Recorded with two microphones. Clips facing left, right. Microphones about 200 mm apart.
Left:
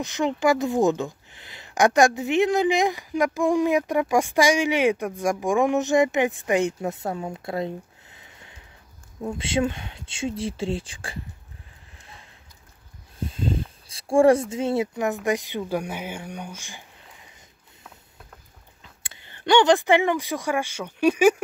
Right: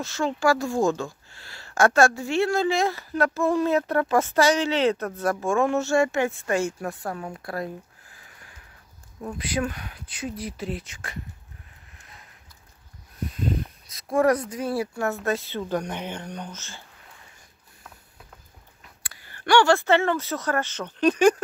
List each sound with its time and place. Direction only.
0.0 s speech: 20° left (ahead or behind)
12.0 s a sound: 30° left (ahead or behind)
13.2 s speech: 30° left (ahead or behind)
18.8 s speech: 25° left (ahead or behind)